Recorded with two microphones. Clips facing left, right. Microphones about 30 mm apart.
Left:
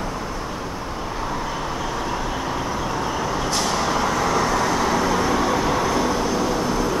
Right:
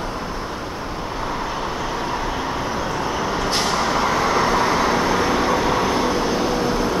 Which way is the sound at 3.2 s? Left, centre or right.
Right.